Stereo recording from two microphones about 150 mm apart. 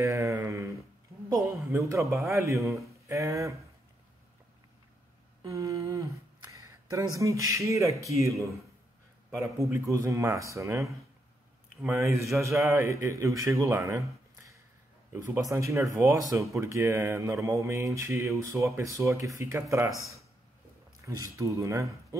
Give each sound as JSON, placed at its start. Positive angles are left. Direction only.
{"t": 0.0, "sound": "a sound", "side_deg": -20}
{"t": 2.3, "sound": "speech", "side_deg": -20}
{"t": 5.4, "sound": "humming", "side_deg": -20}
{"t": 6.5, "sound": "speech", "side_deg": -20}
{"t": 9.6, "sound": "speech", "side_deg": -20}
{"t": 21.0, "sound": "speech", "side_deg": -20}